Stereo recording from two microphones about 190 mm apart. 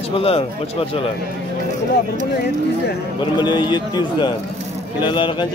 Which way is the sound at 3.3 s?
25° left (ahead or behind).